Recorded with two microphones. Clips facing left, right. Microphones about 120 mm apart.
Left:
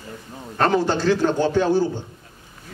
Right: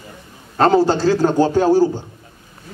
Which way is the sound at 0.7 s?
40° right (ahead or behind).